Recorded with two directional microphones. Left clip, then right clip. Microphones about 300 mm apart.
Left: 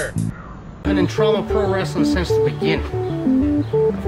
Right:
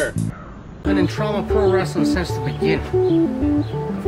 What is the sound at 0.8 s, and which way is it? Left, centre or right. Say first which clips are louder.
Speech: left 3 dB; centre.